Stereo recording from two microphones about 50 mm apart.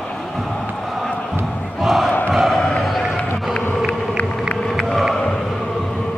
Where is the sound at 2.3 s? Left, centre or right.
Centre.